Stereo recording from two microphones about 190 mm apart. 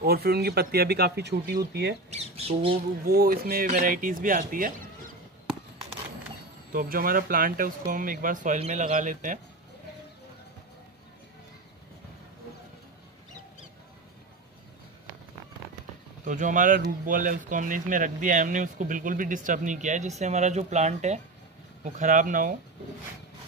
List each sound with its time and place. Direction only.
0.0 s speech: 55° right (ahead or behind)
2.0 s speech: 35° right (ahead or behind)
3.1 s speech: 55° right (ahead or behind)
6.7 s speech: 50° right (ahead or behind)
16.3 s speech: 45° right (ahead or behind)